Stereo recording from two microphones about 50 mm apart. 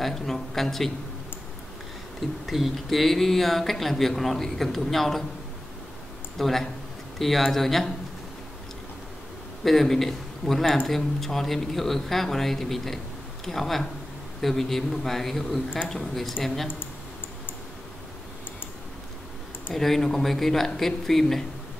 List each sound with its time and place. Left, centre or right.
0.0 s speech: centre
2.1 s speech: centre
6.3 s speech: centre
9.7 s speech: centre
19.7 s speech: centre